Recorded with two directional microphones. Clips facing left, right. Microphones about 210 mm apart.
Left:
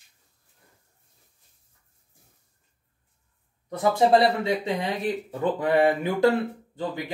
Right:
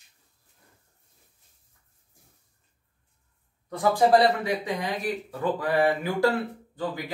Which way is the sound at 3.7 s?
25° left (ahead or behind).